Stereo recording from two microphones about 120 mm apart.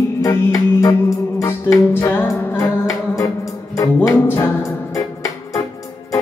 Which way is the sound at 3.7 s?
25° left (ahead or behind).